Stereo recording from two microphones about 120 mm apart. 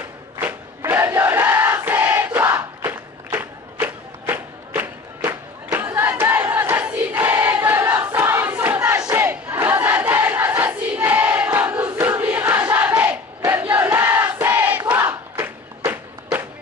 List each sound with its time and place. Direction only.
0.4 s battle cry: 15° right (ahead or behind)
9.0 s crowd: 20° right (ahead or behind)
13.0 s battle cry: 10° right (ahead or behind)
15.9 s music: 15° right (ahead or behind)